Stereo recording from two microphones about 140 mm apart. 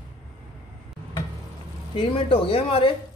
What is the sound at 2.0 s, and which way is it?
Speech, 40° left (ahead or behind).